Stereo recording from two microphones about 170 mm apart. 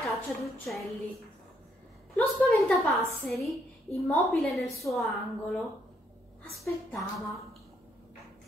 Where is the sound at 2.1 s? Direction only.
Centre (ahead or behind).